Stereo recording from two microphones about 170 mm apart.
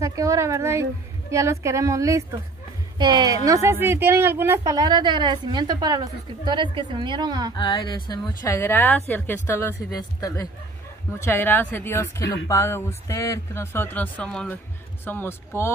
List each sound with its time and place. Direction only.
0.0 s a woman's voice: 20° right (ahead or behind)
7.5 s a woman's voice: 30° left (ahead or behind)